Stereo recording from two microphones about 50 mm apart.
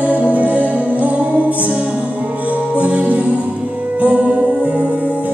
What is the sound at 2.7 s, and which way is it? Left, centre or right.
Music, right.